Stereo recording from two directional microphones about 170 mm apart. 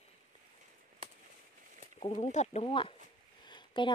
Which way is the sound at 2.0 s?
35° left (ahead or behind).